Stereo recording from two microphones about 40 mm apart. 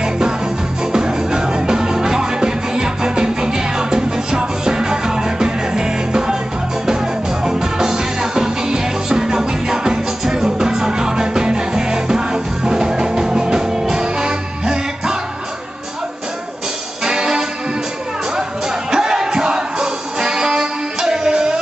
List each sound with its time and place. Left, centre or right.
0.9 s music: centre
7.4 s music: centre
17.0 s music: centre
18.9 s music: centre